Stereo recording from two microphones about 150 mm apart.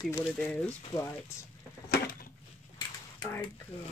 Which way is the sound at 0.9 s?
25° left (ahead or behind).